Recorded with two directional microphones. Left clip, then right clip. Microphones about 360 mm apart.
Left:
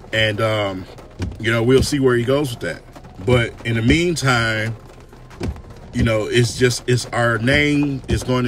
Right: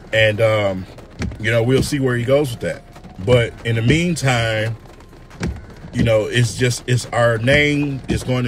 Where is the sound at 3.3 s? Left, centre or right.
Centre.